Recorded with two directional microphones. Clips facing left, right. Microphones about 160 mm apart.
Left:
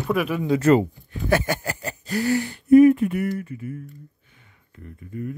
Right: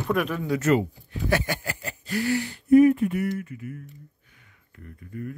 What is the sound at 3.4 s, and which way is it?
Speech, 30° left (ahead or behind).